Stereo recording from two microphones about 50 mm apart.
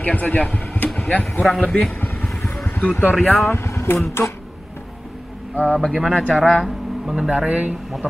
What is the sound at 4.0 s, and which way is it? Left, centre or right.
Speech, left.